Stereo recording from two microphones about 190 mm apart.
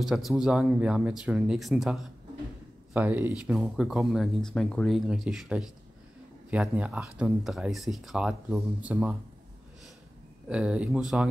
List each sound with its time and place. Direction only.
0.0 s speech: centre (ahead or behind)
10.5 s speech: 5° right (ahead or behind)